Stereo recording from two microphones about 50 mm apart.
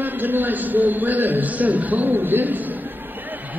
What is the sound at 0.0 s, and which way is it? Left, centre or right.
A man's voice, right.